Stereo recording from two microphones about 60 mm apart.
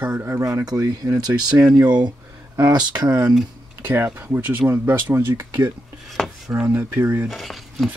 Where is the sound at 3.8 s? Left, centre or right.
Right.